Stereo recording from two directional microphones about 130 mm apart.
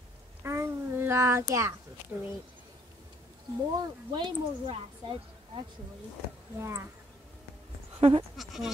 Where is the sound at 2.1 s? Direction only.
20° right (ahead or behind).